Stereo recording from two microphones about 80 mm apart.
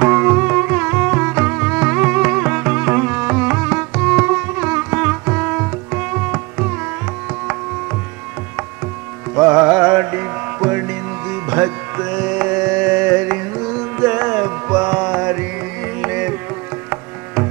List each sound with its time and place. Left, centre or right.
0.0 s music: right; by 2.4 s centre
2.4 s music: right
9.3 s music: right
12.5 s carnatic music: centre
13.9 s music: right
16.0 s carnatic music: centre